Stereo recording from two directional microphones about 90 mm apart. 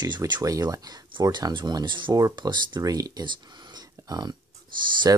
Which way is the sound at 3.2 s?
50° right (ahead or behind).